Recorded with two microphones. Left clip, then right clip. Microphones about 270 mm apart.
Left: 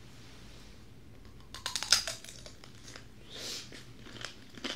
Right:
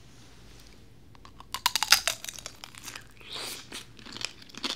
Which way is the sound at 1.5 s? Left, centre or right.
Right.